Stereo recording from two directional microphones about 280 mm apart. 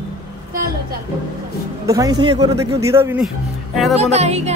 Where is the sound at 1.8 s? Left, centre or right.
Centre.